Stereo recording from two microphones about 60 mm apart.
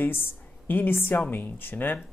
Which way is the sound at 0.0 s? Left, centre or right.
Left.